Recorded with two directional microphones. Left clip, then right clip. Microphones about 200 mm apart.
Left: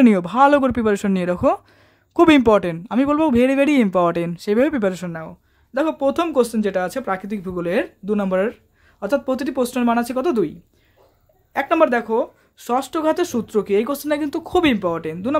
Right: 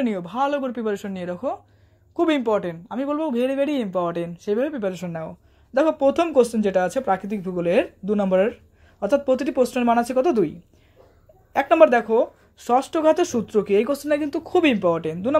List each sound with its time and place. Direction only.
0.0 s speech: 30° left (ahead or behind)
5.1 s speech: centre (ahead or behind)
11.5 s speech: centre (ahead or behind)